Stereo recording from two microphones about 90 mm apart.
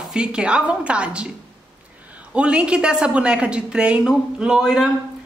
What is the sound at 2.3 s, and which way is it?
A woman's voice, 15° right (ahead or behind).